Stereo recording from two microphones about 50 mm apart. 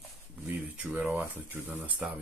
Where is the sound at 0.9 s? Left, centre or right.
Centre.